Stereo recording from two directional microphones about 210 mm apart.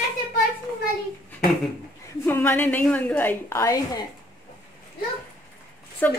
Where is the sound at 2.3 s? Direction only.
10° left (ahead or behind).